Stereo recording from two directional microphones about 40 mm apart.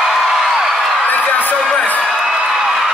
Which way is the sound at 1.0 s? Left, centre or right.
Left.